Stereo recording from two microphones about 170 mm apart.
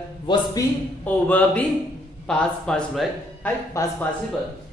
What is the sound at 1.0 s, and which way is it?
Speech, 10° left (ahead or behind).